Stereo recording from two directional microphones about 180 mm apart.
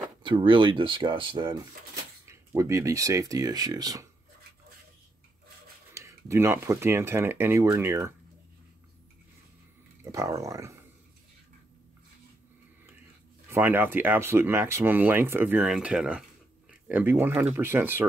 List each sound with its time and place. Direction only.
0.2 s speech: 25° right (ahead or behind)
5.9 s speech: 15° right (ahead or behind)
10.1 s speech: 15° right (ahead or behind)
13.5 s speech: 10° right (ahead or behind)